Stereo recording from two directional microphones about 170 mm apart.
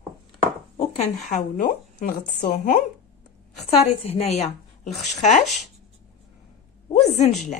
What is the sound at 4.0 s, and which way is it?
A woman's voice, 40° left (ahead or behind).